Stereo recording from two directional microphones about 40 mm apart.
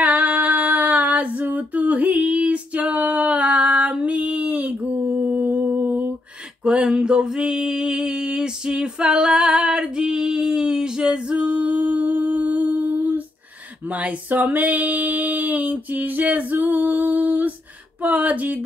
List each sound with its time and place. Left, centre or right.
0.0 s female singing: right
6.6 s a sound: right
8.1 s female singing: right